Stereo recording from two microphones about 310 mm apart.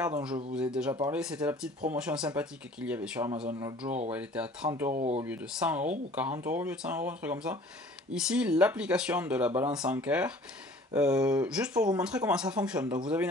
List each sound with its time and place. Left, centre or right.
0.6 s speech: centre
4.9 s speech: right
5.2 s speech: centre